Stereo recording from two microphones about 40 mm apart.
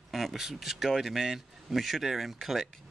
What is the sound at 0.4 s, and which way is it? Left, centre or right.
Speech, centre.